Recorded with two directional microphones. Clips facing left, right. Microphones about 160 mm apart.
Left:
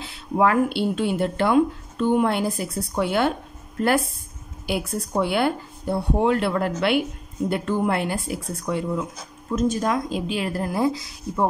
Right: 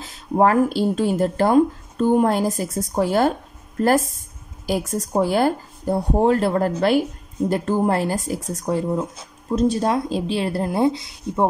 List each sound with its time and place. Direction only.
0.0 s speech: 40° right (ahead or behind)
4.9 s speech: 40° right (ahead or behind); by 11.4 s 25° right (ahead or behind)